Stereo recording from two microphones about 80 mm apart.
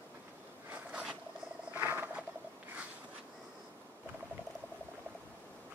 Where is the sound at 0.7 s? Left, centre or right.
Centre.